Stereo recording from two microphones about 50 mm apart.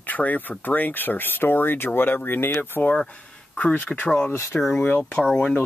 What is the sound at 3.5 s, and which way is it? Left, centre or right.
Speech, left.